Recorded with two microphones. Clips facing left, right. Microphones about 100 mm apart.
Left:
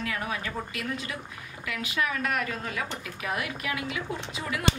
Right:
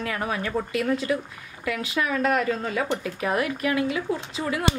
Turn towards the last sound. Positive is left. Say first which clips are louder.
# right 5 dB
turn(degrees=-35)  # may be behind; listen again after turning